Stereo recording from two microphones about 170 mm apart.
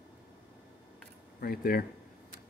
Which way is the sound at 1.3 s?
60° left (ahead or behind).